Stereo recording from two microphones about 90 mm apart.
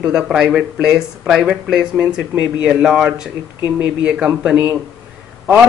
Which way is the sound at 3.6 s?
20° right (ahead or behind).